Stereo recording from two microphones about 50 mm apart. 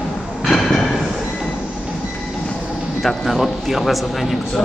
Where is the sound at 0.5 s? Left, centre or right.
Centre.